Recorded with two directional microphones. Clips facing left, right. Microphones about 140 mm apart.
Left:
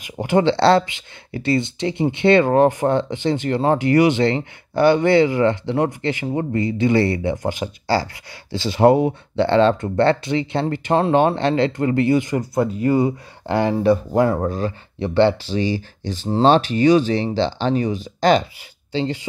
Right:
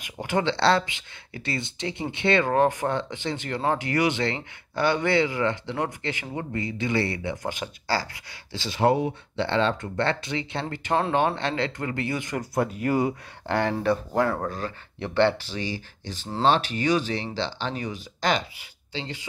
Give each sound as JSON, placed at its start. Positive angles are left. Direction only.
{"t": 0.2, "sound": "speech", "side_deg": 35}
{"t": 12.3, "sound": "speech", "side_deg": 0}
{"t": 13.5, "sound": "speech", "side_deg": 10}
{"t": 15.5, "sound": "speech", "side_deg": 30}